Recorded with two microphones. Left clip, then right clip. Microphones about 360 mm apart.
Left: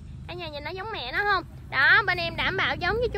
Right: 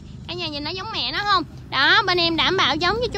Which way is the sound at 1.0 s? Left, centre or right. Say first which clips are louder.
Right 4 dB; centre.